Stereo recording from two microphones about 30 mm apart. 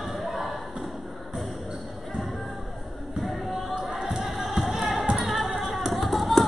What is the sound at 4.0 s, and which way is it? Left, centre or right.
Music, right.